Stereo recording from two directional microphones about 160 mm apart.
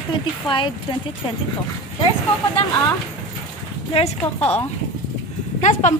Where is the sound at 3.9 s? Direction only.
40° left (ahead or behind).